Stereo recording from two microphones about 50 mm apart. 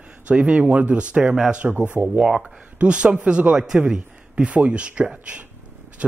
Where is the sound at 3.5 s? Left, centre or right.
Centre.